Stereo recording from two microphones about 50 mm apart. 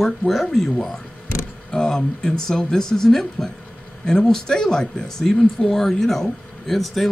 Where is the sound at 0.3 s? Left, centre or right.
Centre.